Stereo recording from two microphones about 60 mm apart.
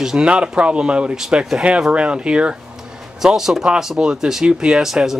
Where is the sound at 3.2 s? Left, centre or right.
Centre.